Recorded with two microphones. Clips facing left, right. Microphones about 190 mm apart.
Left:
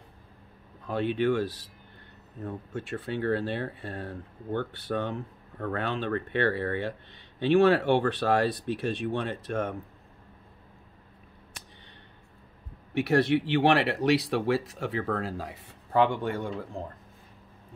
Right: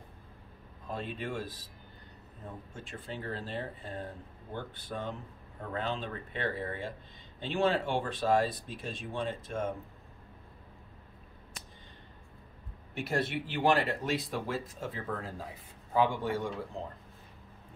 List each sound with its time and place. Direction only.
0.8 s speech: 75° left (ahead or behind)
12.9 s speech: 70° left (ahead or behind)